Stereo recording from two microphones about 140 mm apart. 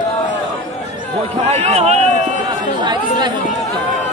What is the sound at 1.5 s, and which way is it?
Speech, 50° right (ahead or behind).